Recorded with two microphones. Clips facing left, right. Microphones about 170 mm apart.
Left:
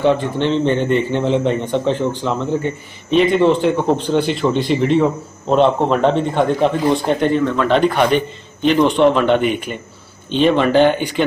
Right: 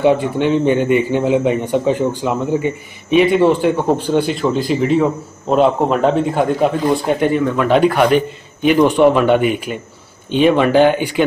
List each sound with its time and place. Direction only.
0.0 s a man's voice: 10° right (ahead or behind)